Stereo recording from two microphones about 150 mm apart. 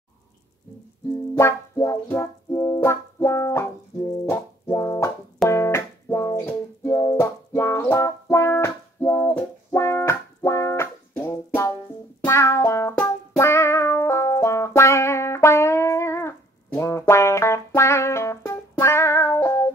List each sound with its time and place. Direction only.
1.4 s music: 15° left (ahead or behind)